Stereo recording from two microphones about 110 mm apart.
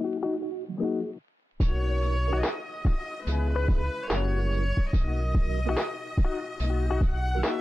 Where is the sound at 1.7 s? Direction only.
Centre (ahead or behind).